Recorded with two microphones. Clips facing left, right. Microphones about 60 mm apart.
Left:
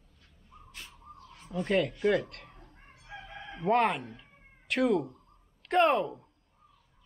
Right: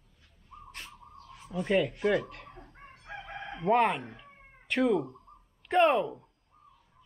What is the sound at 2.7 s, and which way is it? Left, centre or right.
Crowing, right.